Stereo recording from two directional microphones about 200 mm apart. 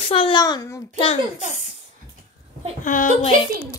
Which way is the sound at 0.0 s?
25° left (ahead or behind).